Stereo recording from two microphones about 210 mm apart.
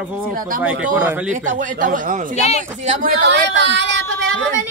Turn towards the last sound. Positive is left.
turn(degrees=-65)  # may be behind; listen again after turning